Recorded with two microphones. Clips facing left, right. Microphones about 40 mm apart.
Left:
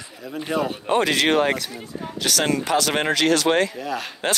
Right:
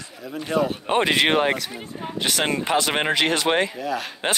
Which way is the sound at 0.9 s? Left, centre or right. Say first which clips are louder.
Left 1 dB; right.